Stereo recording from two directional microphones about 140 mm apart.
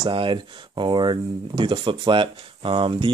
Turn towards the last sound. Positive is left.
turn(degrees=-40)  # may be behind; listen again after turning